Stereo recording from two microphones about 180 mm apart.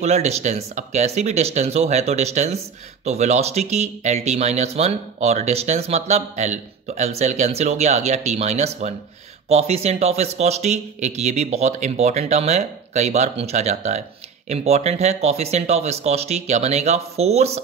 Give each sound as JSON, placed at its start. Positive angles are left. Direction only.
{"t": 0.0, "sound": "speech", "side_deg": -35}